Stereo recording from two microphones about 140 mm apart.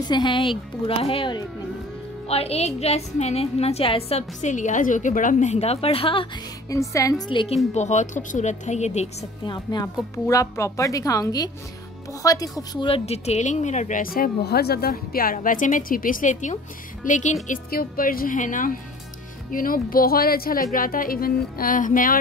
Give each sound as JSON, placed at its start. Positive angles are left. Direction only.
{"t": 0.1, "sound": "a woman's voice", "side_deg": 35}
{"t": 4.4, "sound": "a woman's voice", "side_deg": 60}
{"t": 6.7, "sound": "speech", "side_deg": 25}
{"t": 7.2, "sound": "a woman's voice", "side_deg": 40}
{"t": 9.5, "sound": "speech", "side_deg": 30}
{"t": 12.8, "sound": "a woman's voice", "side_deg": 45}
{"t": 19.5, "sound": "speech", "side_deg": 90}